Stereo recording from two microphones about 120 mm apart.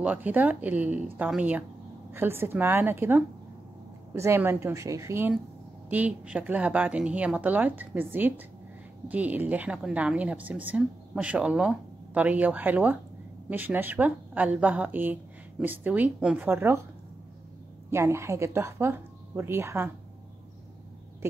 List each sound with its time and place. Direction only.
0.0 s a woman's voice: 15° right (ahead or behind)
16.4 s speech: 20° right (ahead or behind)
17.8 s speech: 20° right (ahead or behind)